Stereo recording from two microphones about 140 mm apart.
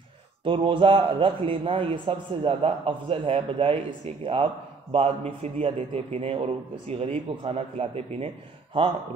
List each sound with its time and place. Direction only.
0.4 s a man's voice: 40° right (ahead or behind)